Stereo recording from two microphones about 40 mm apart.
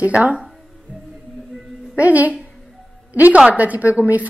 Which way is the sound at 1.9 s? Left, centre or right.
Right.